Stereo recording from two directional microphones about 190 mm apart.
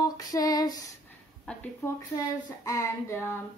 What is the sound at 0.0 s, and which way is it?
Female singing, 20° left (ahead or behind).